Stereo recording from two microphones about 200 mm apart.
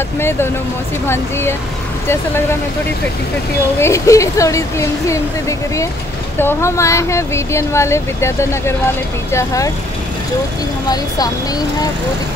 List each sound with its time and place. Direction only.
0.2 s speech: 10° left (ahead or behind)
3.8 s speech: 15° left (ahead or behind)